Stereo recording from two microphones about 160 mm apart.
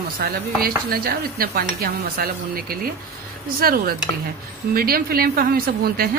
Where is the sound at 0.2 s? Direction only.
70° right (ahead or behind).